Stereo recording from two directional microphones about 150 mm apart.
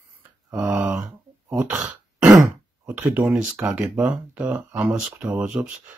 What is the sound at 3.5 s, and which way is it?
Speech, 10° right (ahead or behind).